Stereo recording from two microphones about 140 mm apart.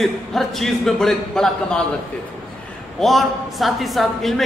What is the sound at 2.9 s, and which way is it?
A man's voice, centre (ahead or behind).